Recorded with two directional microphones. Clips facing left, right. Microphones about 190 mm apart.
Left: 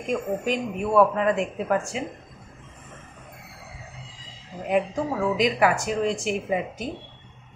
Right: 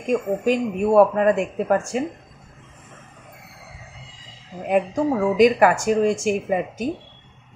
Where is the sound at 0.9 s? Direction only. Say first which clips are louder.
Right 4 dB; 45° right (ahead or behind).